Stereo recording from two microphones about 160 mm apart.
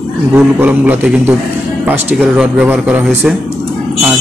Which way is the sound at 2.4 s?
5° right (ahead or behind).